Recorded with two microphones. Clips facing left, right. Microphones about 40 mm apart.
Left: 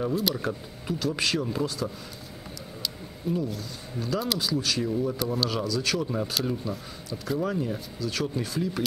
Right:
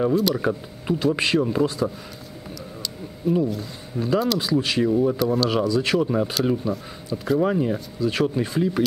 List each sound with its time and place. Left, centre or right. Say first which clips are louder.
0.1 s speech: right 6 dB; centre
0.4 s speech: right 7 dB; right
3.5 s speech: right 6 dB; right
5.2 s speech: right 7 dB; centre
5.7 s speech: right 7 dB; right